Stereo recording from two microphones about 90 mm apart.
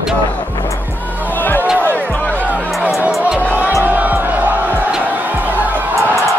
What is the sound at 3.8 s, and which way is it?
Music, 20° right (ahead or behind).